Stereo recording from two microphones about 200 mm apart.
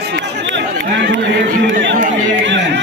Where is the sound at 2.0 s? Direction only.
40° right (ahead or behind).